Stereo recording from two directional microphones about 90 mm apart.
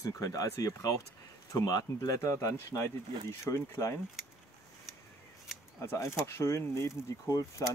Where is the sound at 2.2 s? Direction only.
35° left (ahead or behind).